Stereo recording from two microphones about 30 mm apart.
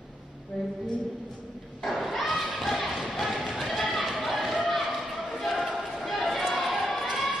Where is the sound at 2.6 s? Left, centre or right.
Centre.